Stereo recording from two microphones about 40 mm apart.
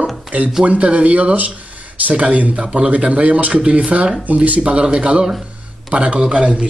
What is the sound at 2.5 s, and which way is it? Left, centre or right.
A man's voice, right.